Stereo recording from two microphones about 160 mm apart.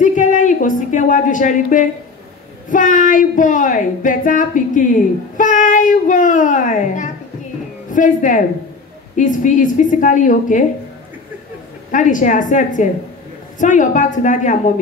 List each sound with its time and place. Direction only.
0.0 s a woman's voice: 50° left (ahead or behind)
11.9 s speech: 50° left (ahead or behind)